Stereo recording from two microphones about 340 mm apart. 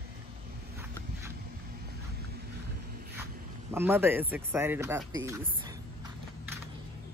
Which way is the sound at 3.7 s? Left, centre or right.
Centre.